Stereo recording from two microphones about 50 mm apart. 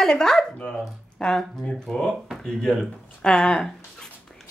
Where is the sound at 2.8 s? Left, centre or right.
Centre.